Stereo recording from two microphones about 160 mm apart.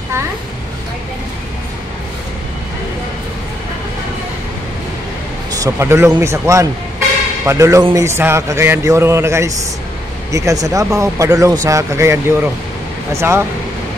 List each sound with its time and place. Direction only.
5.5 s a man's voice: 20° right (ahead or behind)